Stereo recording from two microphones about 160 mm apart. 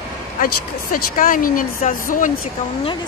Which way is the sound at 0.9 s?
60° left (ahead or behind).